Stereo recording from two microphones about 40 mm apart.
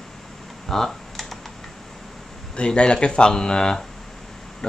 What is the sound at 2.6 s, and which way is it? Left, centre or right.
Speech, left.